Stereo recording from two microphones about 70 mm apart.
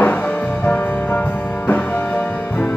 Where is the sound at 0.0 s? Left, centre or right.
Left.